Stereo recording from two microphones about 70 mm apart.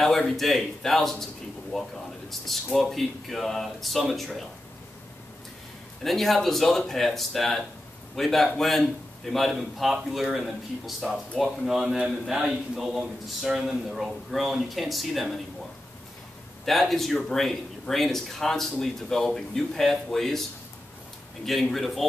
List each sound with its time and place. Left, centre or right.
0.0 s speech: centre
6.0 s speech: centre
16.6 s speech: centre
21.5 s speech: centre